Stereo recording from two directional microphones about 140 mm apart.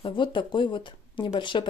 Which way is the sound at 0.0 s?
35° left (ahead or behind).